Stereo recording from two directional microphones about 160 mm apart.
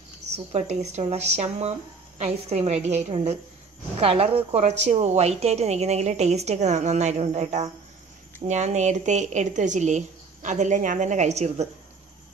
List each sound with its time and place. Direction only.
0.5 s a woman's voice: 45° right (ahead or behind)